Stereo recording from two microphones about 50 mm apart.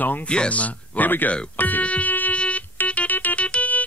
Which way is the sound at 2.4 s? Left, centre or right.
Left.